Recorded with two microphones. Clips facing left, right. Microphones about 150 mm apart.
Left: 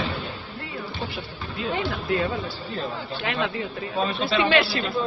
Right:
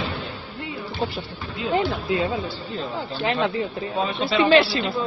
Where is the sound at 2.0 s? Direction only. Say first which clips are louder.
Right 1 dB; 20° right (ahead or behind).